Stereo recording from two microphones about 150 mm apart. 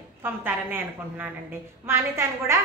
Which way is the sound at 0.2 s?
15° right (ahead or behind).